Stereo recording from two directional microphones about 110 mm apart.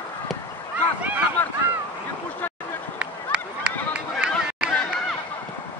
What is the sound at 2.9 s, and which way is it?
Run, 10° right (ahead or behind).